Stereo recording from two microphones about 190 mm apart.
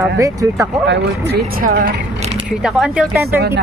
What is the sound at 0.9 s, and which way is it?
Speech, 60° right (ahead or behind).